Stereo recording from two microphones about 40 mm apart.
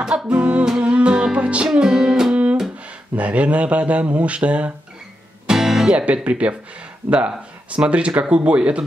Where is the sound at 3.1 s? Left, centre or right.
Right.